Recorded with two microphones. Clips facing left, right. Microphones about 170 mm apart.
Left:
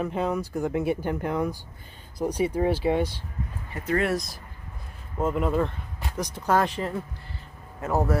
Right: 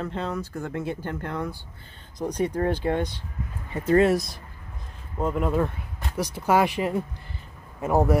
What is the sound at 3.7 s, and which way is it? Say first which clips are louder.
Speech: right 6 dB; 30° right (ahead or behind).